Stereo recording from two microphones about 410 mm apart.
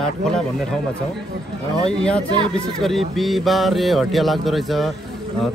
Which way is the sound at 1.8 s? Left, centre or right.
Centre.